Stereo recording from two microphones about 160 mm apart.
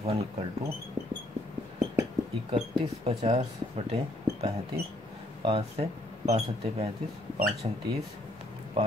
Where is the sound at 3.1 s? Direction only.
40° right (ahead or behind).